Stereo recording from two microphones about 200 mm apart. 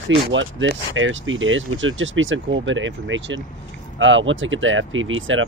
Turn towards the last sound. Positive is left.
turn(degrees=-80)